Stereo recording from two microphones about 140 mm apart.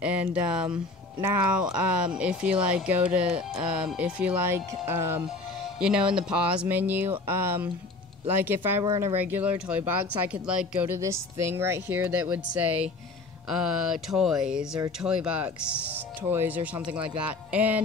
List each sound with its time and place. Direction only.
0.0 s speech: 10° right (ahead or behind)
5.8 s speech: 5° right (ahead or behind)
8.8 s speech: 30° right (ahead or behind)
9.2 s speech: 10° right (ahead or behind)
10.9 s speech: 20° right (ahead or behind)